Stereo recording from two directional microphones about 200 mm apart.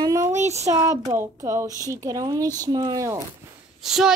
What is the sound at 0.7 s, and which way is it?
A woman's voice, 15° right (ahead or behind).